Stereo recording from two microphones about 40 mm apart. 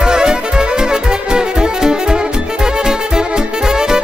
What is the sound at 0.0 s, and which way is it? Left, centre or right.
Music, centre.